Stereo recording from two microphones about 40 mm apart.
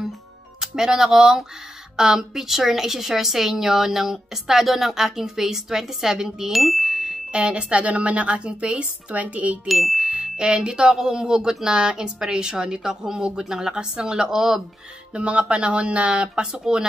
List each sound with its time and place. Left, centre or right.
0.6 s a woman's voice: centre
6.5 s music: centre
7.2 s speech: right
9.1 s speech: right
9.7 s speech: centre
10.0 s speech: right
15.1 s speech: right